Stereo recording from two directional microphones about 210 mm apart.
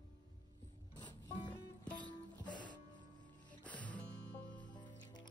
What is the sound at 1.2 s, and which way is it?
Music, 20° left (ahead or behind).